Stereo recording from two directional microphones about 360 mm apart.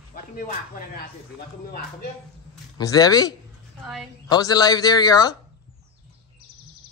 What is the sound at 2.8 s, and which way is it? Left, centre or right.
A man's voice, centre.